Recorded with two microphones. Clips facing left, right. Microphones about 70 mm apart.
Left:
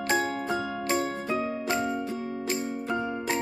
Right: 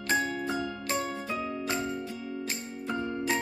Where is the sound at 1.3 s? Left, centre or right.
Left.